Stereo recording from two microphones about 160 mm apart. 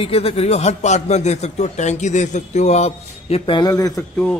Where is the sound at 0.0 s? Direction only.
35° left (ahead or behind); by 4.0 s 20° left (ahead or behind).